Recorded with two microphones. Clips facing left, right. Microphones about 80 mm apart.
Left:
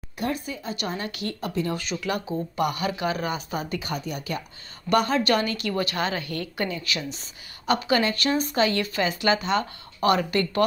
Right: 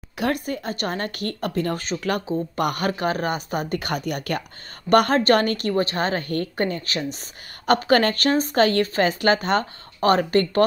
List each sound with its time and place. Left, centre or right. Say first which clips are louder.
0.2 s speech: right 5 dB; right
4.8 s speech: right 5 dB; right
5.7 s a woman's voice: right 4 dB; right